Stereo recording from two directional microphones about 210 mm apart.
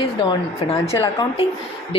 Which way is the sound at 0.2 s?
25° left (ahead or behind).